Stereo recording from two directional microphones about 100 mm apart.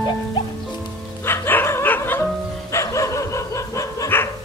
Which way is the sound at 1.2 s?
25° left (ahead or behind).